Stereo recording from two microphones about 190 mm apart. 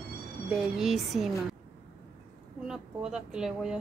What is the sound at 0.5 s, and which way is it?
A woman's voice, centre (ahead or behind).